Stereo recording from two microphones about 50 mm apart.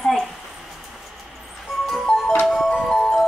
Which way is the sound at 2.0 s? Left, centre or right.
Centre.